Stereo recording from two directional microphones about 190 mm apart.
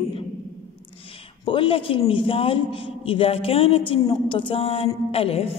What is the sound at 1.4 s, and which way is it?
A woman's voice, 25° left (ahead or behind).